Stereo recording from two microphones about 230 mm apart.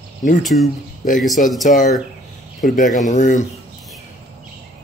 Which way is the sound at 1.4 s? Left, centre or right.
Left.